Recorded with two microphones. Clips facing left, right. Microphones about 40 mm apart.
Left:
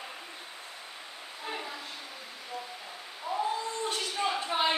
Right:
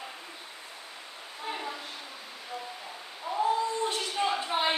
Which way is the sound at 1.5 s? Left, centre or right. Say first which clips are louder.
Right 2 dB; centre.